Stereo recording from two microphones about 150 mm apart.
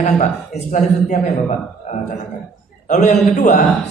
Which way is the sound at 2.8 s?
55° left (ahead or behind).